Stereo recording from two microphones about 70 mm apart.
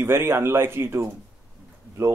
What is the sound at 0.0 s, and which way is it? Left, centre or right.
Speech, right.